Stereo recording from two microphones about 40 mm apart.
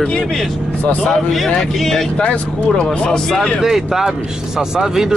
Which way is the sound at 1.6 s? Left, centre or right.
Centre.